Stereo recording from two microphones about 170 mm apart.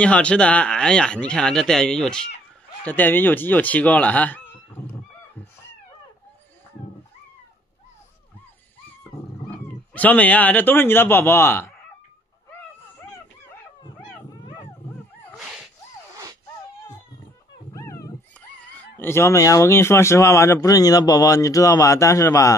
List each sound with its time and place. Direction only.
0.0 s speech: 5° left (ahead or behind)
9.5 s speech: 10° left (ahead or behind)
15.3 s a sound: centre (ahead or behind)
17.7 s dog: 15° left (ahead or behind)
18.6 s speech: 10° left (ahead or behind)